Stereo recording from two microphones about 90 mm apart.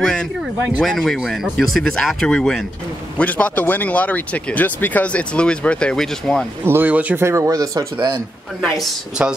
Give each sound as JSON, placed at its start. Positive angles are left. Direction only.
{"t": 0.7, "sound": "speech", "side_deg": 5}
{"t": 6.6, "sound": "speech", "side_deg": -25}
{"t": 7.2, "sound": "speech", "side_deg": -30}
{"t": 9.2, "sound": "speech", "side_deg": -15}